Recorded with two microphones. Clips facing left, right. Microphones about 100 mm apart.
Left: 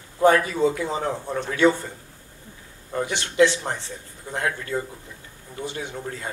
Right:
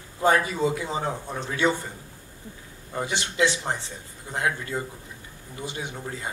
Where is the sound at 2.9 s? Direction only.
15° right (ahead or behind).